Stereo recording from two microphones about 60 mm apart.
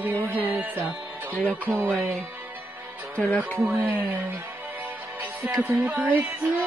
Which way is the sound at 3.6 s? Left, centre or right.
Right.